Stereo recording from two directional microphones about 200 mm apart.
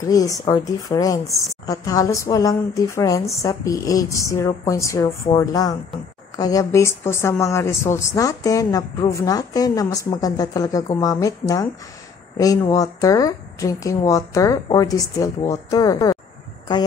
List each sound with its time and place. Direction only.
0.0 s a woman's voice: 15° left (ahead or behind)